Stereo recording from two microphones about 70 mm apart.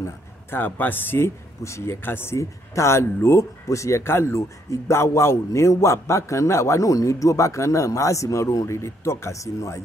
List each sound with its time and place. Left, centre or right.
0.0 s speech: left